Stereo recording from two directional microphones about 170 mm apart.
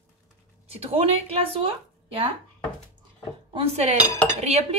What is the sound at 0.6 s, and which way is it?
A woman's voice, 35° right (ahead or behind).